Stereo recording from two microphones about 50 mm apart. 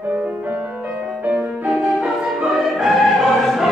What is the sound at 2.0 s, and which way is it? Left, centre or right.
Music, centre.